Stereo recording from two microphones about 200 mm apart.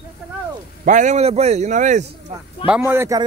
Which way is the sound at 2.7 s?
10° right (ahead or behind).